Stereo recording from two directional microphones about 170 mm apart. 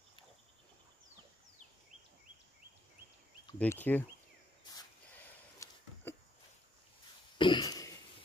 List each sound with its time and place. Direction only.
3.5 s speech: 10° left (ahead or behind)
5.6 s a sound: 20° left (ahead or behind)
7.3 s throat clearing: 25° left (ahead or behind)